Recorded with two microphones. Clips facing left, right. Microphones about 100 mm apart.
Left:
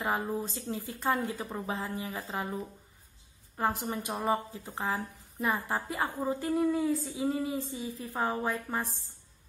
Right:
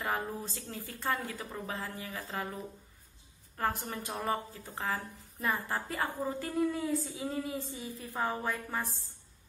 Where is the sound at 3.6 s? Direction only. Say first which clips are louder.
Left 3 dB; 20° left (ahead or behind).